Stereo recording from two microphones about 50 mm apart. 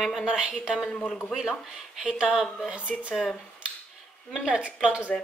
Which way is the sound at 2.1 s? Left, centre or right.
Centre.